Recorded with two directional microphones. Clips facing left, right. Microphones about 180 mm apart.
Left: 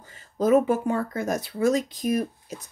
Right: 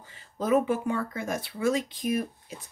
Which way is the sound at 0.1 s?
40° left (ahead or behind).